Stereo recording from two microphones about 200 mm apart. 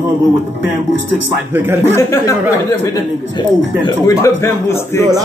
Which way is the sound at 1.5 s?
10° right (ahead or behind).